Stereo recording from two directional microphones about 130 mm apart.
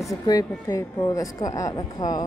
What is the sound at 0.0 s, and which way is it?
Speech, 25° left (ahead or behind).